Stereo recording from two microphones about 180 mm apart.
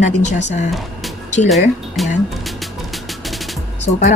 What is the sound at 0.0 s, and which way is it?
Speech, 40° left (ahead or behind).